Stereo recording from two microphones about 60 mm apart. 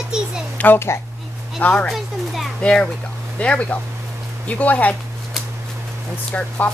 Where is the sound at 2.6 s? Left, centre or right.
Centre.